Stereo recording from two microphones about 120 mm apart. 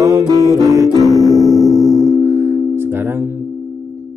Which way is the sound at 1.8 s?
Centre (ahead or behind).